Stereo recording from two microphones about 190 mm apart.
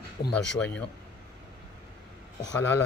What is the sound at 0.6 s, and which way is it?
Speech, 5° left (ahead or behind).